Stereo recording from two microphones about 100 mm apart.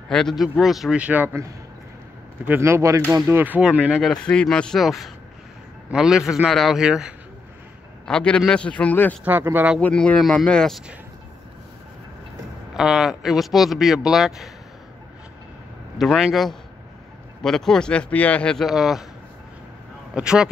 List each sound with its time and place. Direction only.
0.1 s speech: 5° left (ahead or behind)
0.9 s speech: 15° right (ahead or behind)
2.6 s speech: 30° right (ahead or behind)
3.3 s speech: 20° right (ahead or behind)
4.0 s speech: 10° left (ahead or behind); by 7.2 s 5° right (ahead or behind)
8.0 s a man's voice: 10° left (ahead or behind)
9.2 s speech: 20° right (ahead or behind)
9.8 s a man's voice: 15° left (ahead or behind)
12.7 s speech: 5° right (ahead or behind)
16.0 s speech: 5° right (ahead or behind)
20.2 s speech: 10° right (ahead or behind)